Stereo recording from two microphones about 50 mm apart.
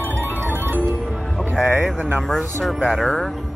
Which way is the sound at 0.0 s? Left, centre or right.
Right.